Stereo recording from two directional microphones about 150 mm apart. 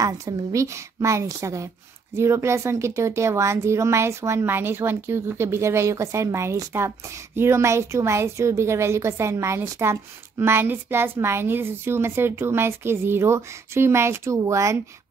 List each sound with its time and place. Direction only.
0.0 s a woman's voice: 20° right (ahead or behind)